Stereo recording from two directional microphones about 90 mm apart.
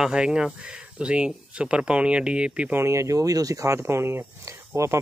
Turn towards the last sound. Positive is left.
turn(degrees=-30)  # may be behind; listen again after turning